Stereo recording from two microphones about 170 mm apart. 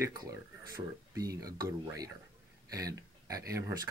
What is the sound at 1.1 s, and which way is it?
Speech, 20° right (ahead or behind).